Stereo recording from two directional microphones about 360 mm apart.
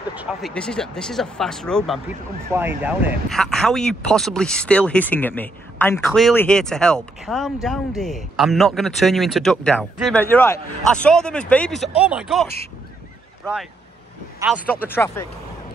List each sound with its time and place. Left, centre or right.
0.1 s speech: centre
14.4 s speech: centre